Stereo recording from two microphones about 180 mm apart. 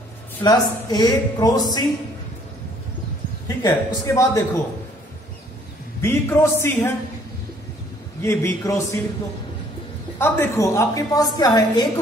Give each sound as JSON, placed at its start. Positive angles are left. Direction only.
{"t": 0.4, "sound": "speech", "side_deg": 20}
{"t": 3.4, "sound": "a woman's voice", "side_deg": 20}
{"t": 5.9, "sound": "a woman's voice", "side_deg": 15}
{"t": 8.2, "sound": "a woman's voice", "side_deg": 15}
{"t": 10.1, "sound": "a woman's voice", "side_deg": 15}